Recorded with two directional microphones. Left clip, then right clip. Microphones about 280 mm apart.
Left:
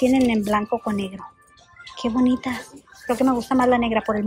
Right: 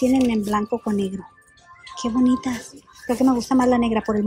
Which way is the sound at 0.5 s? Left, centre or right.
Centre.